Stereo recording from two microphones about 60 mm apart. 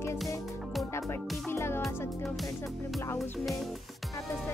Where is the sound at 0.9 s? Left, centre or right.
Left.